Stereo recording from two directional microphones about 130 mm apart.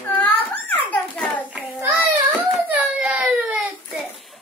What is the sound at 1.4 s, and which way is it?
Speech, 10° right (ahead or behind).